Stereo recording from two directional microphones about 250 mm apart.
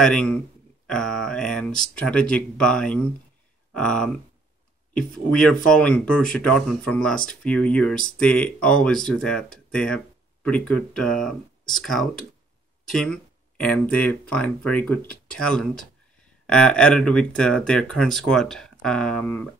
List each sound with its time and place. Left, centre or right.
0.0 s speech: centre